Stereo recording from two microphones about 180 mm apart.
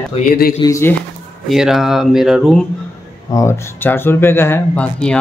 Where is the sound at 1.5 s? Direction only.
Centre (ahead or behind).